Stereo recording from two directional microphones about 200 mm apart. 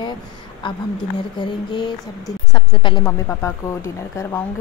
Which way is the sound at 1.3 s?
20° left (ahead or behind).